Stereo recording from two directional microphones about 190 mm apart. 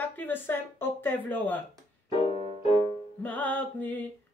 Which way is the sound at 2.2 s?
35° left (ahead or behind).